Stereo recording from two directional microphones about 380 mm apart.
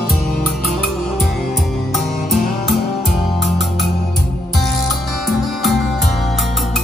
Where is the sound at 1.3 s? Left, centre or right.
Centre.